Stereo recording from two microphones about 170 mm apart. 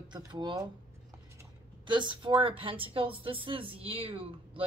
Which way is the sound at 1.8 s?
25° right (ahead or behind).